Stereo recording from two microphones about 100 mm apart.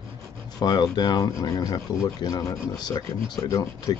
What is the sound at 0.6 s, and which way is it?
Speech, 45° left (ahead or behind).